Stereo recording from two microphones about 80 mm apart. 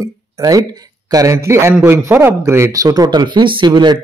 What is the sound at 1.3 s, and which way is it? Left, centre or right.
A man's voice, right.